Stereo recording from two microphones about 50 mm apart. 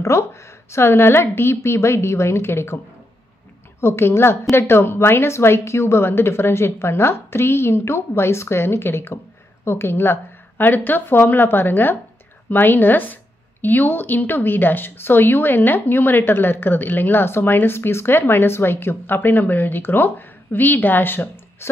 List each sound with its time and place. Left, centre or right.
0.0 s a woman's voice: left
3.8 s a woman's voice: left